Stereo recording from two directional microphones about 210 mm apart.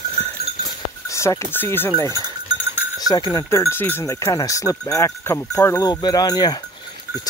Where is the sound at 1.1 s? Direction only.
15° left (ahead or behind).